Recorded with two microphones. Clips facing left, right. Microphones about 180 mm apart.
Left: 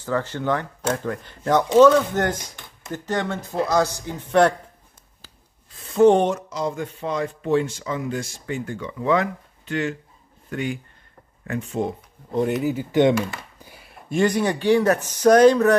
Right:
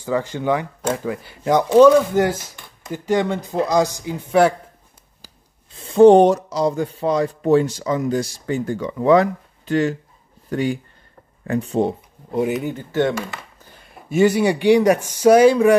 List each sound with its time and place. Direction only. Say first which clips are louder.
0.0 s speech: right 3 dB; 15° right (ahead or behind)
5.8 s speech: right 6 dB; 30° right (ahead or behind)
12.3 s speech: right 1 dB; 5° right (ahead or behind)